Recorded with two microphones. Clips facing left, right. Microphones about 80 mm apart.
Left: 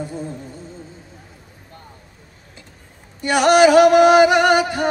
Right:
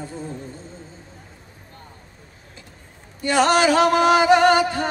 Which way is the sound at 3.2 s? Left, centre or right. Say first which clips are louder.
Left 4 dB; centre.